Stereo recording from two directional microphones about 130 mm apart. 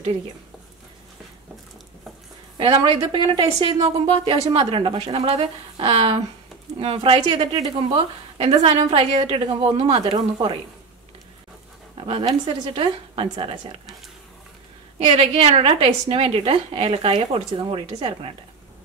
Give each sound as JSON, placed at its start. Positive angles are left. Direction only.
{"t": 2.5, "sound": "a woman's voice", "side_deg": -40}
{"t": 8.4, "sound": "a woman's voice", "side_deg": -50}
{"t": 12.4, "sound": "a woman's voice", "side_deg": -45}
{"t": 15.0, "sound": "a woman's voice", "side_deg": -45}